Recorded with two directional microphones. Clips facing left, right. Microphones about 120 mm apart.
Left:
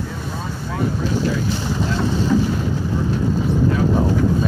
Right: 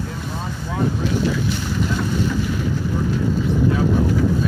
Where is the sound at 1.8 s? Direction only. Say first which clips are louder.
Left 1 dB; 30° left (ahead or behind).